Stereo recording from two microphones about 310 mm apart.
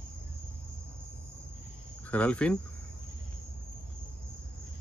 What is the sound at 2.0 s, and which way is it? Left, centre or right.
Speech, centre.